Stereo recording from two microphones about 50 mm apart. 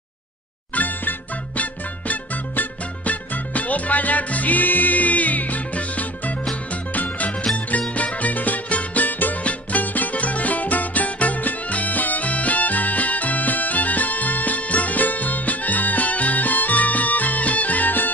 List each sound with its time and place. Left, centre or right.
0.7 s music: left